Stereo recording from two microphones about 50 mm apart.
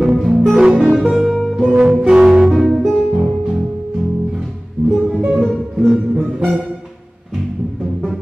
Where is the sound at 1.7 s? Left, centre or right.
Centre.